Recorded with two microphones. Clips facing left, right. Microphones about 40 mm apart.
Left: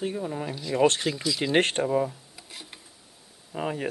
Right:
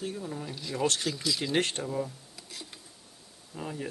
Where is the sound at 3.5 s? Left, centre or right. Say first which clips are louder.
Left 7 dB; left.